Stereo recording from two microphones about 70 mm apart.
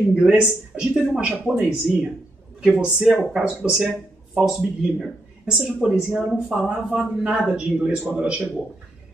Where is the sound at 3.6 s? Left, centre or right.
Centre.